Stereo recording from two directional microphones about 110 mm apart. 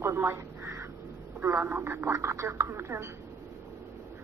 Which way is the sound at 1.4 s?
15° right (ahead or behind).